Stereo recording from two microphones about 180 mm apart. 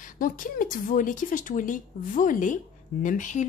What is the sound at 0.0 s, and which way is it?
A woman's voice, 45° left (ahead or behind).